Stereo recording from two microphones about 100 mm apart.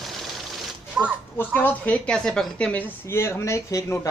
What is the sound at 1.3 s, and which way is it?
A woman's voice, 20° left (ahead or behind).